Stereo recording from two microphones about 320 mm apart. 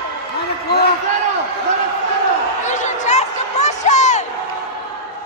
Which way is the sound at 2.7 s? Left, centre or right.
Left.